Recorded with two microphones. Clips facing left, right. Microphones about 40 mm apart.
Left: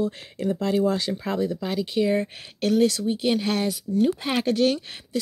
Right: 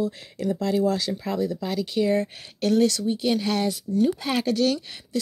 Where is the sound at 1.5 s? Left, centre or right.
Left.